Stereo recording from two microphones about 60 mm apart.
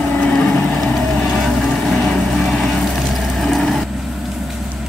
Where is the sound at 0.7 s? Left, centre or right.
Centre.